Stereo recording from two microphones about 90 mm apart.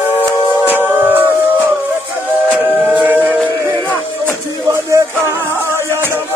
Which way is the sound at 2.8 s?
20° right (ahead or behind).